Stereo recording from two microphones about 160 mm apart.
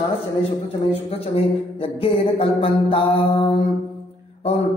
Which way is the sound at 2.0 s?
35° left (ahead or behind).